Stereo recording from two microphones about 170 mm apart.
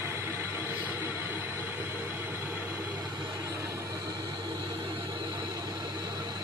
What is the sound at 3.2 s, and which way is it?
Train, 20° right (ahead or behind).